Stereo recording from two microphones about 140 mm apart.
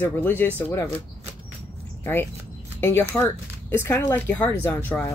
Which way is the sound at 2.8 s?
15° left (ahead or behind).